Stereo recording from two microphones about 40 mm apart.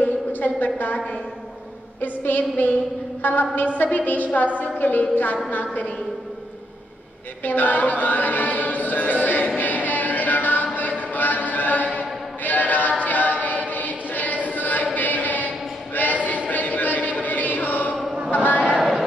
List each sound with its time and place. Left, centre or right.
0.0 s a sound: left
0.7 s a woman's voice: left
7.4 s chant: left
9.6 s music: left
12.4 s choir: left
13.0 s a capella: left
13.4 s choir: left
15.0 s a sound: left
18.8 s a sound: centre